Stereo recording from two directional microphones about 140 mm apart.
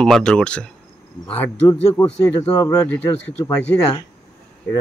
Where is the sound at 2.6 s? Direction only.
25° left (ahead or behind).